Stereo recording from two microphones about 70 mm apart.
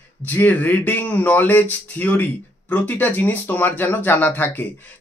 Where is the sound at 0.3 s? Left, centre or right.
Left.